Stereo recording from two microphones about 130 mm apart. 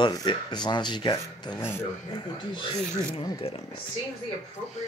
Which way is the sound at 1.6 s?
15° left (ahead or behind).